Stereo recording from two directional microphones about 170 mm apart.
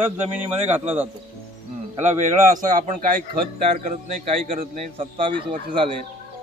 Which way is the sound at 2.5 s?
50° right (ahead or behind).